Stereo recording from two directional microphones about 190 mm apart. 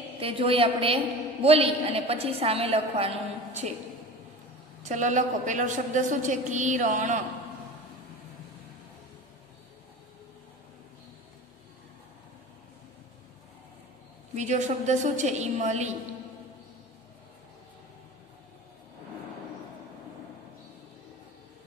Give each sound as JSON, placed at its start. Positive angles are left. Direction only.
{"t": 0.2, "sound": "a woman's voice", "side_deg": -30}
{"t": 4.8, "sound": "a woman's voice", "side_deg": -40}
{"t": 14.3, "sound": "a woman's voice", "side_deg": -40}